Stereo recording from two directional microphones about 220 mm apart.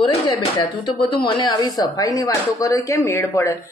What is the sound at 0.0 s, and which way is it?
Speech, 20° left (ahead or behind).